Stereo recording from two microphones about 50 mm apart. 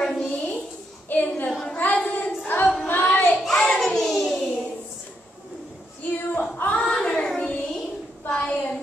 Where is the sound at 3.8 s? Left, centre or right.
Centre.